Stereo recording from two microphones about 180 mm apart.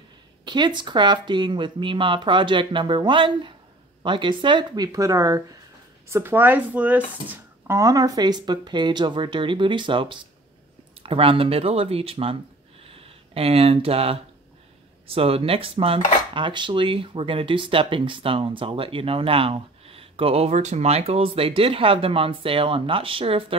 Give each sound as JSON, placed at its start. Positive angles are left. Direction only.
{"t": 0.5, "sound": "speech", "side_deg": -25}